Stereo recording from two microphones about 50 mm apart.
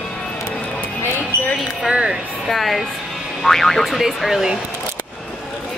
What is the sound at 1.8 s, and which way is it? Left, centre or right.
Speech, centre.